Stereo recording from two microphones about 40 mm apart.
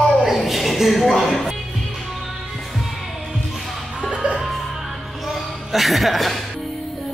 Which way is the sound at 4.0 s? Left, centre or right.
Centre.